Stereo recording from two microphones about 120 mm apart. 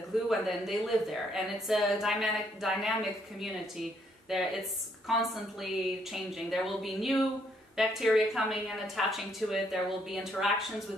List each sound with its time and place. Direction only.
0.3 s a woman's voice: centre (ahead or behind)